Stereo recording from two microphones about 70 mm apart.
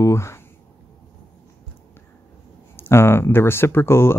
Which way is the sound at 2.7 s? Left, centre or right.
Left.